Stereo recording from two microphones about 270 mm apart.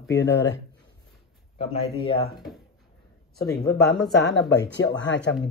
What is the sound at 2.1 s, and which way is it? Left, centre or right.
Speech, left.